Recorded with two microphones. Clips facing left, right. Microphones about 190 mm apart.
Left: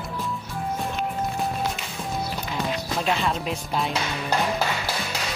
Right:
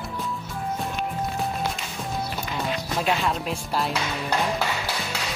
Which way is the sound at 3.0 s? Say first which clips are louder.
Even; centre (ahead or behind).